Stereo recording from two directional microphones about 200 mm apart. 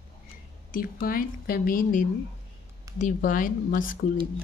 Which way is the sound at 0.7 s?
45° left (ahead or behind).